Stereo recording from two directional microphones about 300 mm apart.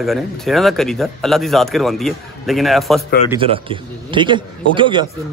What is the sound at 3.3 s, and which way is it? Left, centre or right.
A man's voice, centre.